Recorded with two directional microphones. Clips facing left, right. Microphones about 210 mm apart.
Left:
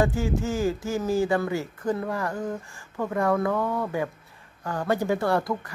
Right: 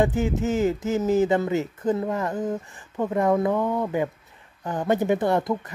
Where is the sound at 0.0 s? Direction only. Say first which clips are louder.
Right 2 dB; 20° right (ahead or behind).